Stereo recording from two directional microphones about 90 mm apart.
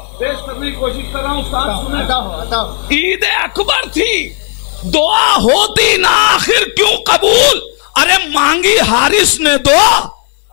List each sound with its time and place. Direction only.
0.2 s speech: 20° left (ahead or behind)